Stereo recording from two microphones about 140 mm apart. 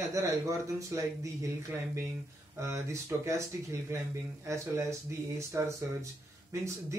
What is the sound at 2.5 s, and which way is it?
A man's voice, 20° right (ahead or behind).